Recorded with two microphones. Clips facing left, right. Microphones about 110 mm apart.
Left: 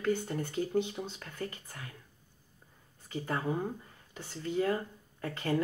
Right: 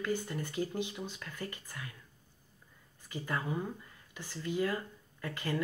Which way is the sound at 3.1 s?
30° left (ahead or behind).